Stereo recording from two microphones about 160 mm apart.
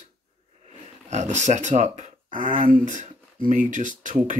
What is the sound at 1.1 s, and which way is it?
Speech, 45° right (ahead or behind).